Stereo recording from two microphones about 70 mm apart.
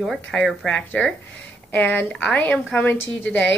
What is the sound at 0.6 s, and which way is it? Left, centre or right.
Speech, centre.